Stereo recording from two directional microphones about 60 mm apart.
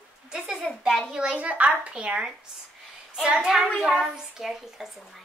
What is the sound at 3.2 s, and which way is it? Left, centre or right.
Hands, centre.